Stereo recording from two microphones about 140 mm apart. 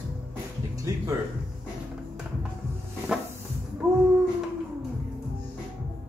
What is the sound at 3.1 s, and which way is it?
Cupboard open or close, 5° right (ahead or behind).